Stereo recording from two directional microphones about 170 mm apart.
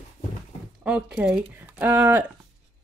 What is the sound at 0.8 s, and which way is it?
Speech, 5° right (ahead or behind).